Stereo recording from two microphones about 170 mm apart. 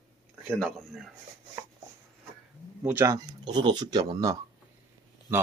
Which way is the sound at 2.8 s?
15° right (ahead or behind).